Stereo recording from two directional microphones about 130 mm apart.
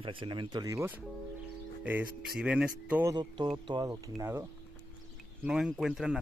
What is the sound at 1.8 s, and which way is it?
Speech, 10° right (ahead or behind).